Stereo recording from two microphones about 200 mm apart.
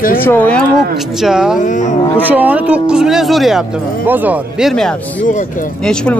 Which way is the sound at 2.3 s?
10° right (ahead or behind).